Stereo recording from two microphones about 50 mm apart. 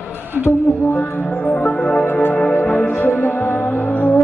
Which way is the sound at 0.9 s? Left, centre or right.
Left.